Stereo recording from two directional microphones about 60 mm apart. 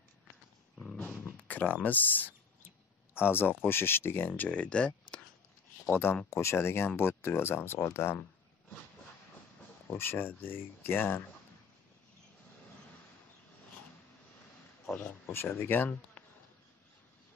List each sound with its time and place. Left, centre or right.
1.5 s speech: left
4.4 s speech: left
5.9 s speech: left
9.9 s speech: left
15.2 s speech: left
16.2 s bee: left